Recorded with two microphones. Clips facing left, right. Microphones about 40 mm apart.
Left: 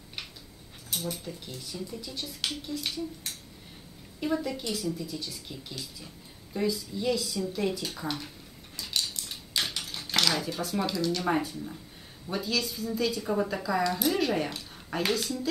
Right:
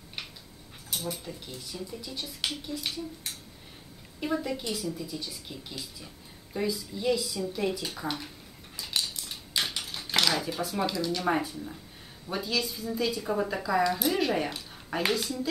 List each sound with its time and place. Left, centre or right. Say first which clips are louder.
0.8 s speech: even; centre
8.7 s a sound: even; centre
12.3 s speech: even; centre